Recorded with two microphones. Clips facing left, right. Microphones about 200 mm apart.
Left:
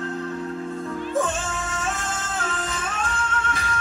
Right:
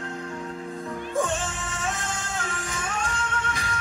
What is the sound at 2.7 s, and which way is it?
Music, 15° right (ahead or behind).